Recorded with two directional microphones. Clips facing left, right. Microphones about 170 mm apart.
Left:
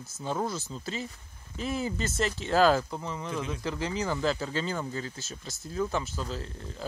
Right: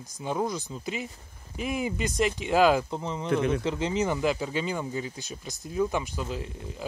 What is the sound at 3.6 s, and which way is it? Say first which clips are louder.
Speech: right 4 dB; 20° right (ahead or behind).